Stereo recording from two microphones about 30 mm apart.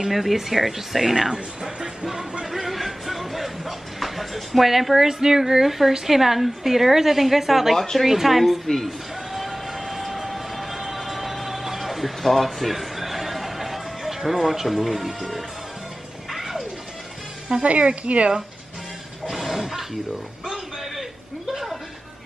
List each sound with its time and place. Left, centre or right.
0.1 s speech: centre
2.4 s music: centre
5.0 s a woman's voice: centre
7.7 s speech: centre
8.0 s speech: centre
8.6 s speech: centre
9.3 s vehicle: centre
16.3 s music: centre
17.6 s speech: right
19.3 s a sound: centre